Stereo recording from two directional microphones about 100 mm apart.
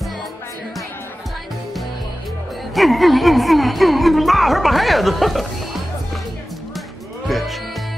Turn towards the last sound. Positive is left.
turn(degrees=0)  # may be behind; listen again after turning